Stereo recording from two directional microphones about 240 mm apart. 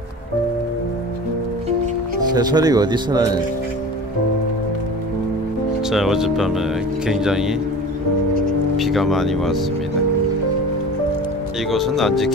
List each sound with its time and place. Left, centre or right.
2.3 s speech: centre
5.9 s speech: centre
8.7 s speech: centre
11.7 s speech: centre